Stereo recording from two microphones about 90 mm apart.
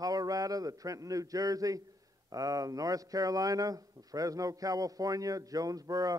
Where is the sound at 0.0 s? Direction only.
45° right (ahead or behind).